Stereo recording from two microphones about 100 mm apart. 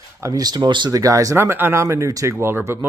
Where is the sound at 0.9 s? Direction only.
35° right (ahead or behind).